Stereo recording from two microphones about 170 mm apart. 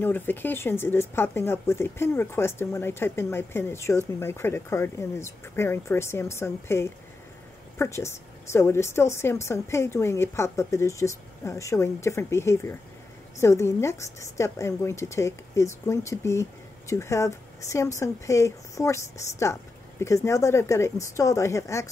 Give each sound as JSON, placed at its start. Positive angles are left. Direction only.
{"t": 0.0, "sound": "speech", "side_deg": 10}